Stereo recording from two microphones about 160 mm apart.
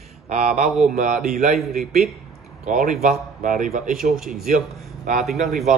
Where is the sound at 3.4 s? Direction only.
55° right (ahead or behind).